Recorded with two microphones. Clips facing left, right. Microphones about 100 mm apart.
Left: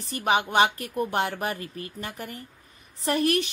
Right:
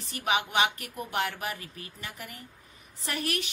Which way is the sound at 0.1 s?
35° left (ahead or behind).